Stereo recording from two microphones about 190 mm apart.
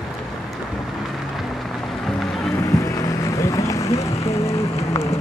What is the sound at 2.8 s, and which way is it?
Boat, 15° left (ahead or behind).